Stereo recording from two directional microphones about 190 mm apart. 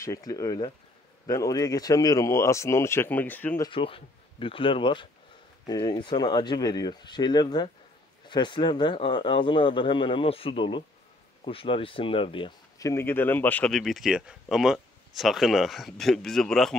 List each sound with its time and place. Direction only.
0.0 s speech: 20° left (ahead or behind)
3.6 s speech: 30° left (ahead or behind); by 16.7 s centre (ahead or behind)